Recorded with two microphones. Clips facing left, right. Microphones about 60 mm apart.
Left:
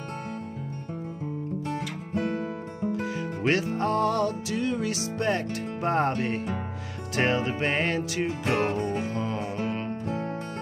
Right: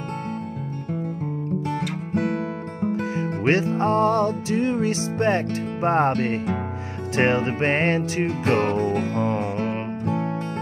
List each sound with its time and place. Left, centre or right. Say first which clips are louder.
1.7 s music: right 5 dB; right
2.9 s music: right 5 dB; right
8.3 s music: right 6 dB; right